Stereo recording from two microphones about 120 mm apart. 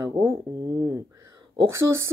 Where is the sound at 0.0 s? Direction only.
20° right (ahead or behind).